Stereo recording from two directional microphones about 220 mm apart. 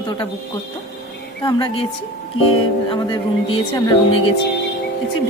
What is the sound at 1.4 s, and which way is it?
Speech, 20° left (ahead or behind).